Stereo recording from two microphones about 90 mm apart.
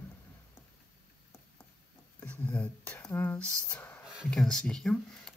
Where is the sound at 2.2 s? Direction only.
15° left (ahead or behind).